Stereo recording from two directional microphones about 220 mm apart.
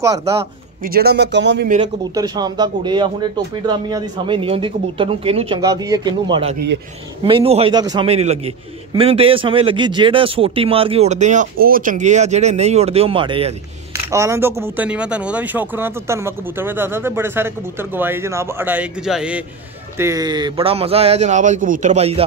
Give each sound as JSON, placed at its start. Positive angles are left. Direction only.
{"t": 0.0, "sound": "speech", "side_deg": -15}
{"t": 0.8, "sound": "speech", "side_deg": -45}
{"t": 2.1, "sound": "speech", "side_deg": -15}
{"t": 5.6, "sound": "speech", "side_deg": -15}
{"t": 14.1, "sound": "speech", "side_deg": -15}
{"t": 20.0, "sound": "a man's voice", "side_deg": -15}